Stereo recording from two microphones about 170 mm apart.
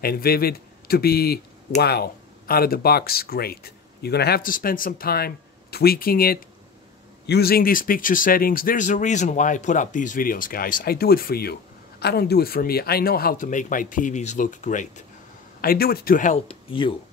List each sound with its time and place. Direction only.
0.0 s speech: 65° left (ahead or behind); by 15.0 s 45° left (ahead or behind)
15.6 s speech: 60° left (ahead or behind)
16.4 s speech: 30° left (ahead or behind)